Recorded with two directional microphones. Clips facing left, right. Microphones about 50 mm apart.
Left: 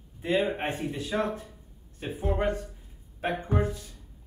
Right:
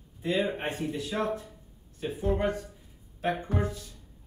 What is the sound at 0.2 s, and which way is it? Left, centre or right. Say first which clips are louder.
Speech: left 2 dB; left.